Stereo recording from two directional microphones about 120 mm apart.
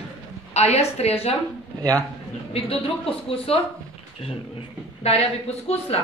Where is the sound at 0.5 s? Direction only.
60° left (ahead or behind).